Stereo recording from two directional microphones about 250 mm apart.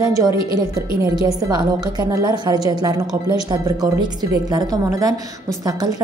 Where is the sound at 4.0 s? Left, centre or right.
Centre.